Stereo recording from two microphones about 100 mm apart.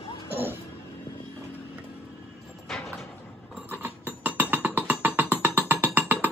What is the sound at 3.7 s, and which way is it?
Music, 15° right (ahead or behind).